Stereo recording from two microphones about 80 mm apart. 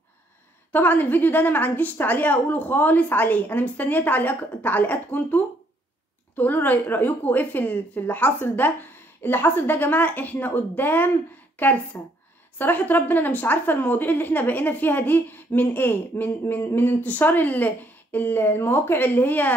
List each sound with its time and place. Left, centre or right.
0.7 s a woman's voice: left